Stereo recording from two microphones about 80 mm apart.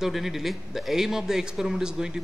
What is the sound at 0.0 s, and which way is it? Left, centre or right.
A man's voice, centre.